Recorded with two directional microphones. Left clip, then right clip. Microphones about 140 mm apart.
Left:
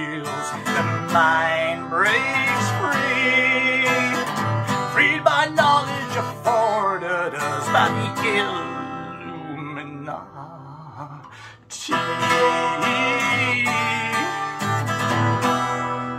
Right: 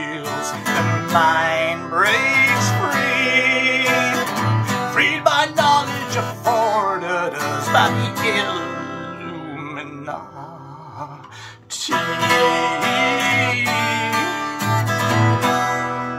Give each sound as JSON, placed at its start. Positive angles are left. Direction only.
{"t": 0.3, "sound": "music", "side_deg": -30}
{"t": 1.3, "sound": "music", "side_deg": -5}
{"t": 2.5, "sound": "music", "side_deg": -25}
{"t": 3.3, "sound": "music", "side_deg": -10}
{"t": 3.8, "sound": "music", "side_deg": -25}
{"t": 4.9, "sound": "music", "side_deg": -10}
{"t": 6.4, "sound": "music", "side_deg": -25}
{"t": 7.0, "sound": "music", "side_deg": -5}
{"t": 11.9, "sound": "music", "side_deg": -25}
{"t": 13.5, "sound": "music", "side_deg": -10}
{"t": 14.1, "sound": "music", "side_deg": -25}